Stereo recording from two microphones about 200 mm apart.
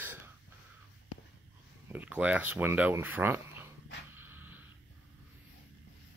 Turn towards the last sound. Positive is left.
turn(degrees=-10)  # may be behind; listen again after turning